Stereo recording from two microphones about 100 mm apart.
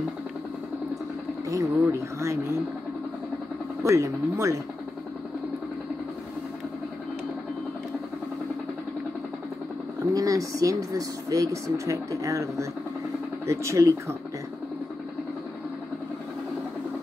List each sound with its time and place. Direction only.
1.5 s speech: 30° right (ahead or behind)
3.8 s speech: 30° right (ahead or behind)
10.1 s speech: 35° right (ahead or behind)